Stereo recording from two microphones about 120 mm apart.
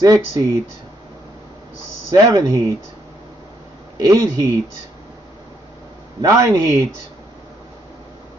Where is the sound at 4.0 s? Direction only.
30° right (ahead or behind).